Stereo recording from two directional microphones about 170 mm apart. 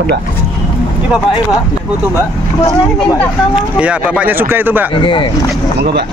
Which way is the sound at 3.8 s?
5° right (ahead or behind).